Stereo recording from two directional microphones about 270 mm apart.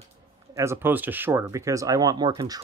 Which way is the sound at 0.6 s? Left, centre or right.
Centre.